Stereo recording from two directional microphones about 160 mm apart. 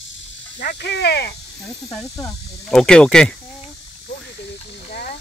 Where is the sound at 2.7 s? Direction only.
5° left (ahead or behind).